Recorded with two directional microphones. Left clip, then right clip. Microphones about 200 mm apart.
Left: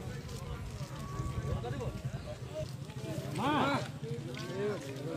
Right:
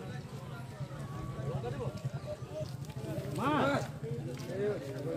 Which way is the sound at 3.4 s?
60° left (ahead or behind).